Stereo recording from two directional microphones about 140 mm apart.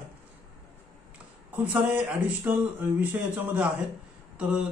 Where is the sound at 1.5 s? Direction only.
10° right (ahead or behind).